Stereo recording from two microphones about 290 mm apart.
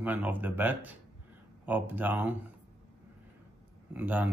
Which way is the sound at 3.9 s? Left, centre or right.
Centre.